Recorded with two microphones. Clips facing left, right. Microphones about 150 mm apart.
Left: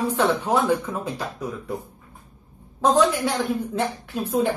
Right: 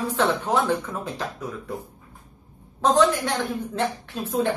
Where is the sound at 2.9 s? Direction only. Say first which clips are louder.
Right 1 dB; 10° left (ahead or behind).